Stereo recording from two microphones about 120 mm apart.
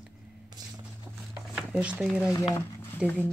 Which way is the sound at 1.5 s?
10° right (ahead or behind).